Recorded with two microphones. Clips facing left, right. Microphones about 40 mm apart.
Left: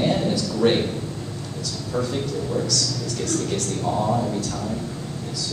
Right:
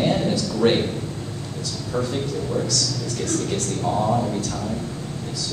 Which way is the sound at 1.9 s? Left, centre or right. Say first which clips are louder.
Even; centre.